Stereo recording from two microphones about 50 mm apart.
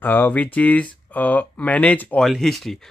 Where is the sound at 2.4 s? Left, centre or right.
Centre.